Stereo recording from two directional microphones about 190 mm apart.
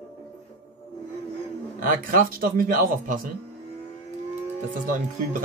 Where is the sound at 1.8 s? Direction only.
45° right (ahead or behind).